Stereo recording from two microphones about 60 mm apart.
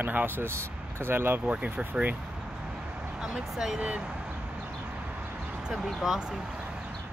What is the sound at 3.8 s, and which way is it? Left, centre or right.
Speech, centre.